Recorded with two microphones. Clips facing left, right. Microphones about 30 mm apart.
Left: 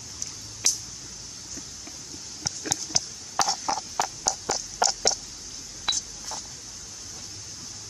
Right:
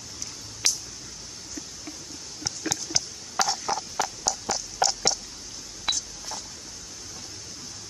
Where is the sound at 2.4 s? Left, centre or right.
Centre.